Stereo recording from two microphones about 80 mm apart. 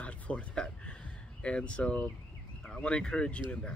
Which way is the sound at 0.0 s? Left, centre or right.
Centre.